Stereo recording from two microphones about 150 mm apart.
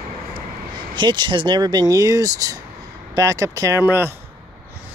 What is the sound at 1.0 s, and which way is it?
Speech, 30° right (ahead or behind).